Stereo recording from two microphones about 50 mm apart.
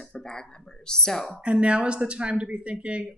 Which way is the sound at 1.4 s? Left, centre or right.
Right.